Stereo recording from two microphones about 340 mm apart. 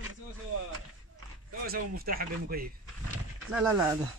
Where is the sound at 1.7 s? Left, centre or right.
Right.